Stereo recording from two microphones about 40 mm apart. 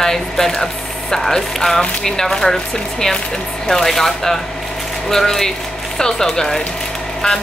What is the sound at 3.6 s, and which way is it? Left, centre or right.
A woman's voice, centre.